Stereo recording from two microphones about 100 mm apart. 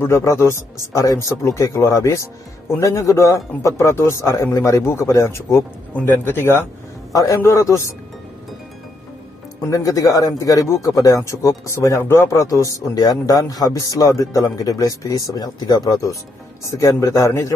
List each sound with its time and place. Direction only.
0.0 s speech: 30° left (ahead or behind)
5.9 s speech: 20° left (ahead or behind)
9.7 s speech: 35° left (ahead or behind)